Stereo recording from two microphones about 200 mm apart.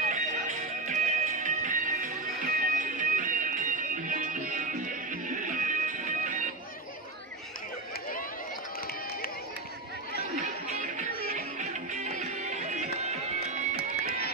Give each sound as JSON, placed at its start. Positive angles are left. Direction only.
{"t": 0.1, "sound": "music", "side_deg": -35}
{"t": 10.4, "sound": "music", "side_deg": -40}